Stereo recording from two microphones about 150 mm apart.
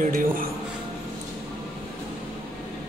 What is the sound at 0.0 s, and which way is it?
Speech, 70° right (ahead or behind).